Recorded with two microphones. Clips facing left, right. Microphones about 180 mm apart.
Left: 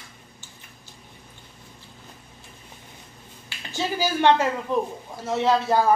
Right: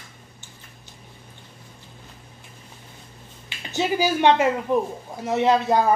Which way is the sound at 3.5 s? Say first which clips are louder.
Right 4 dB; 20° right (ahead or behind).